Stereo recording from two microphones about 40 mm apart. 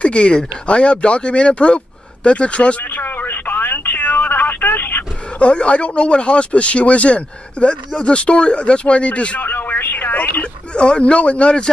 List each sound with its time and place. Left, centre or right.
0.0 s speech: left
2.8 s telephone: left
5.4 s speech: left
9.4 s a sound: left
10.7 s speech: left